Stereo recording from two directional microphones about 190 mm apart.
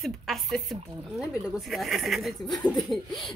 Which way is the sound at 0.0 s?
Centre (ahead or behind).